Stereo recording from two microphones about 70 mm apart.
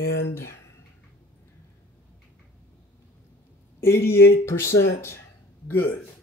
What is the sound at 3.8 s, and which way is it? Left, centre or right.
Speech, left.